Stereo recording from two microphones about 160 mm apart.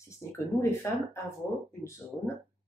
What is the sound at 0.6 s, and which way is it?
Speech, 15° left (ahead or behind).